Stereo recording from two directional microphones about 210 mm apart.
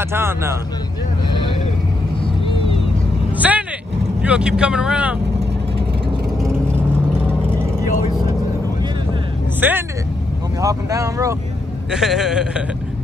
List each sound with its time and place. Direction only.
0.1 s speech: 10° right (ahead or behind)
2.4 s vehicle: 25° left (ahead or behind)
3.3 s vehicle: 5° right (ahead or behind)
4.2 s speech: 5° right (ahead or behind)
9.6 s speech: 10° right (ahead or behind)
11.9 s speech: centre (ahead or behind)